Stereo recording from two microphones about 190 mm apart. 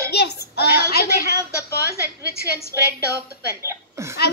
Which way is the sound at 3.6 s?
15° right (ahead or behind).